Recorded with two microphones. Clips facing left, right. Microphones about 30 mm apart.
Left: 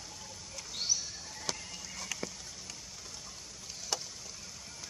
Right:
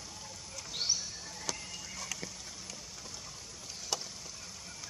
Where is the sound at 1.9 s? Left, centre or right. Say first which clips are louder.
Left 3 dB; centre.